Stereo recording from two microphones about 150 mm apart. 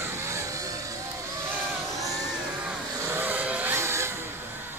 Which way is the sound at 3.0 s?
15° right (ahead or behind).